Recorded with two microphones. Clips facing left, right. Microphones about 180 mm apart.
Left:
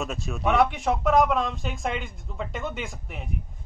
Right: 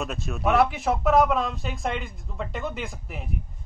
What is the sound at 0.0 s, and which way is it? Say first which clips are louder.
A man's voice: right 1 dB; centre (ahead or behind).